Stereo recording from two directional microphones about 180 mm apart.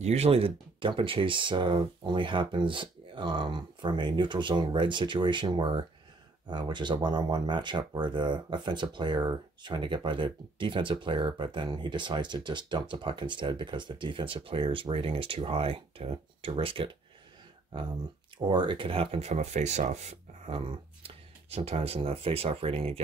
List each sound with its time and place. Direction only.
0.0 s speech: 35° right (ahead or behind)
18.5 s speech: 25° right (ahead or behind)